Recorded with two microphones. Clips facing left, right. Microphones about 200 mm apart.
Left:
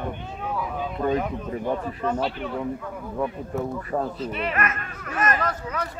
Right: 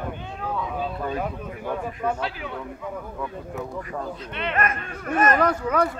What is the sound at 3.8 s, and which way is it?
Speech, 35° left (ahead or behind).